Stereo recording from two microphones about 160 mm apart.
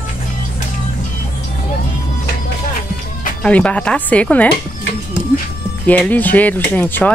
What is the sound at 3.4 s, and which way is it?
Speech, 10° left (ahead or behind).